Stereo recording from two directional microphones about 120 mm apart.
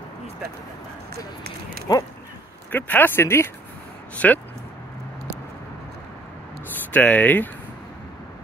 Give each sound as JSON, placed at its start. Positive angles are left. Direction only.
{"t": 1.9, "sound": "speech", "side_deg": 30}
{"t": 2.7, "sound": "speech", "side_deg": 15}
{"t": 6.9, "sound": "speech", "side_deg": 10}